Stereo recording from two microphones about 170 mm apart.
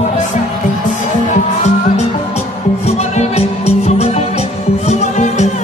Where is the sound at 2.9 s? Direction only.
40° left (ahead or behind).